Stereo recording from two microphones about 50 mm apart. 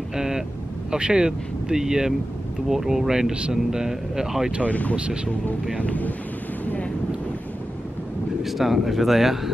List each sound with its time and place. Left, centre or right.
0.1 s speech: centre
4.6 s speech: left
4.9 s speech: right
5.8 s thunder: left
6.6 s wind noise: left
8.4 s speech: centre